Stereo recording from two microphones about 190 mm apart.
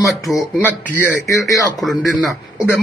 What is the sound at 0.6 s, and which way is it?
Speech, 10° left (ahead or behind).